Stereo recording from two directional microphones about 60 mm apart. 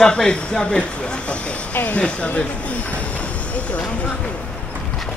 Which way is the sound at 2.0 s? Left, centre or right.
Centre.